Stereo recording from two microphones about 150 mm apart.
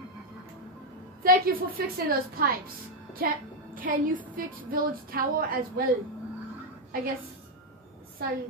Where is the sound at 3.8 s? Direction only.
65° right (ahead or behind).